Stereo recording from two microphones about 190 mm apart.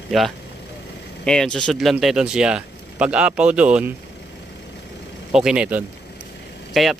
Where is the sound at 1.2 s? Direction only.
5° left (ahead or behind).